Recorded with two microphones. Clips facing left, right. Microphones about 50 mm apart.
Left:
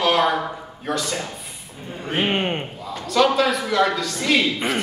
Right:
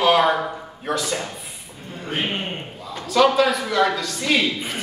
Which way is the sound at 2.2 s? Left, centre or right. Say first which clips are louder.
Left 5 dB; left.